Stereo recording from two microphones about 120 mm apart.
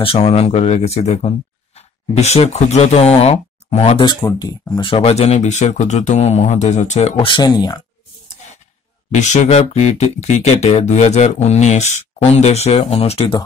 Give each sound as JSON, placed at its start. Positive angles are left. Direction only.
{"t": 0.2, "sound": "speech", "side_deg": 60}
{"t": 4.0, "sound": "speech", "side_deg": 35}
{"t": 5.1, "sound": "speech", "side_deg": 65}
{"t": 7.2, "sound": "speech", "side_deg": 40}
{"t": 9.1, "sound": "speech", "side_deg": 75}
{"t": 12.4, "sound": "speech", "side_deg": 65}